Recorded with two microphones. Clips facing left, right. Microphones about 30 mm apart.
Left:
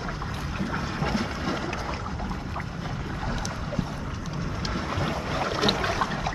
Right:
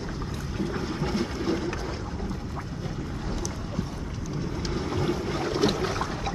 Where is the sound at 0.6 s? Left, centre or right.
Left.